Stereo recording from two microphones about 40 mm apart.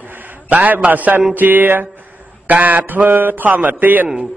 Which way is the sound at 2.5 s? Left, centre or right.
Right.